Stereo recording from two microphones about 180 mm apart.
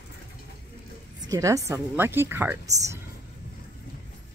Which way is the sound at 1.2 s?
20° right (ahead or behind).